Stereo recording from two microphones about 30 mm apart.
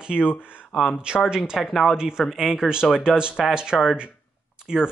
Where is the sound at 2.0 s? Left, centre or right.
Right.